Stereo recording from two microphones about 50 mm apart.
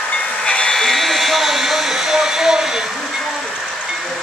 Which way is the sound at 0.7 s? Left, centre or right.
Centre.